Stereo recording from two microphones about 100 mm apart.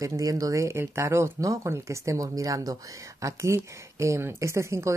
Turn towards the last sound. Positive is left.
turn(degrees=-30)  # may be behind; listen again after turning